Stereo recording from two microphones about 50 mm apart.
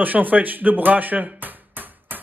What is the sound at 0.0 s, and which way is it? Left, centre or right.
Music, right.